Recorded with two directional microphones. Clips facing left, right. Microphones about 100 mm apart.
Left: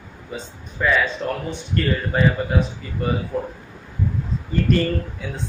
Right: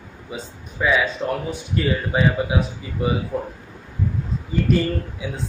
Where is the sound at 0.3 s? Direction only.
10° right (ahead or behind).